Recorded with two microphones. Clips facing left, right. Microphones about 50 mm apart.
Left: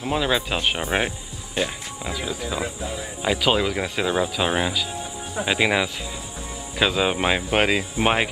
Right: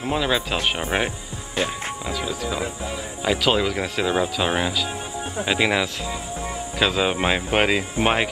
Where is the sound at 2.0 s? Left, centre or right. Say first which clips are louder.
Even; centre.